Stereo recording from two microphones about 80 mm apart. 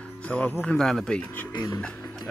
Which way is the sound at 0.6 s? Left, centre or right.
Centre.